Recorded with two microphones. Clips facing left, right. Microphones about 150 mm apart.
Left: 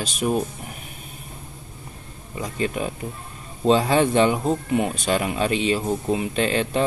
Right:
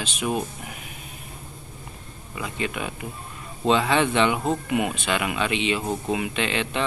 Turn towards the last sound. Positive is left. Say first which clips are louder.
# left 4 dB
turn(degrees=40)  # may be behind; listen again after turning